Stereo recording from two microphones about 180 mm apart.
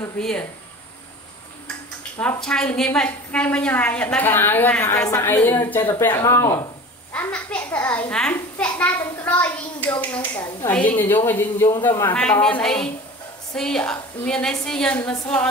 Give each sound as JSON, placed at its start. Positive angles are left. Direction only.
{"t": 0.2, "sound": "a woman's voice", "side_deg": 5}
{"t": 2.1, "sound": "a woman's voice", "side_deg": 5}